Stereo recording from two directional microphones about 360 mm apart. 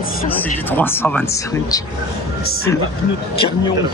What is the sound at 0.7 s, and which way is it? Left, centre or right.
Speech, centre.